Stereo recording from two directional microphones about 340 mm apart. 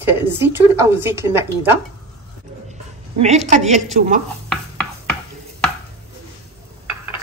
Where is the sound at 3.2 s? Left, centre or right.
Centre.